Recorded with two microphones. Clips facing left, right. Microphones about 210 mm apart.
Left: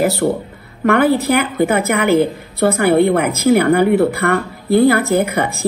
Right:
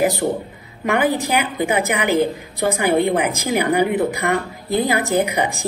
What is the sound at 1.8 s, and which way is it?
Speech, 15° right (ahead or behind).